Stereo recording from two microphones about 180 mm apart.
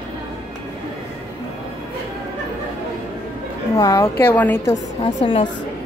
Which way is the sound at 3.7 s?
20° left (ahead or behind).